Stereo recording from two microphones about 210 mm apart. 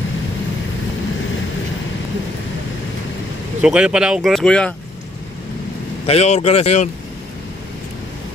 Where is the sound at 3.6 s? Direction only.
5° right (ahead or behind).